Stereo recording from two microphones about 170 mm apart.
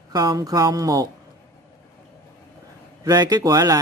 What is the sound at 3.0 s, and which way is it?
Speech, 25° right (ahead or behind).